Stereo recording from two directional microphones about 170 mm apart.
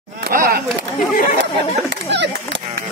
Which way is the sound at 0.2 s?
60° right (ahead or behind).